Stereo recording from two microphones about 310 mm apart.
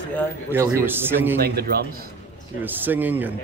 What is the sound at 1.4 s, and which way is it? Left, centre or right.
Speech, right.